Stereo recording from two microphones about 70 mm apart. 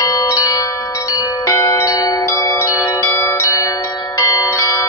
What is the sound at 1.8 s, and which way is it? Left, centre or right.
Wind chime, left.